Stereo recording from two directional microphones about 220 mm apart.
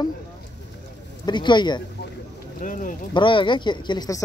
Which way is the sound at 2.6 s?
35° left (ahead or behind).